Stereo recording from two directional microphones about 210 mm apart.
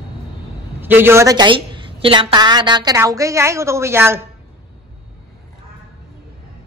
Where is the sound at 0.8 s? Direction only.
10° right (ahead or behind).